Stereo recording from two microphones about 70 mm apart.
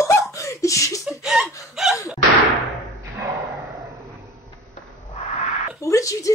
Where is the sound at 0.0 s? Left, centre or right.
Left.